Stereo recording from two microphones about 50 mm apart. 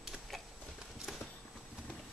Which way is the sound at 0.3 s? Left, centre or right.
Centre.